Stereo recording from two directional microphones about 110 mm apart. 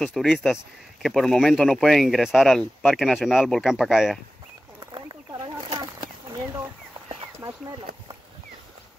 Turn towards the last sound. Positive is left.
turn(degrees=-15)  # may be behind; listen again after turning